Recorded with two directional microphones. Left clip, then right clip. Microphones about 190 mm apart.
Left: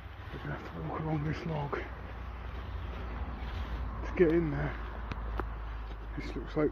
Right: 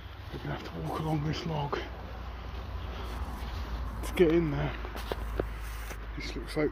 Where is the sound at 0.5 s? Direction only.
25° right (ahead or behind).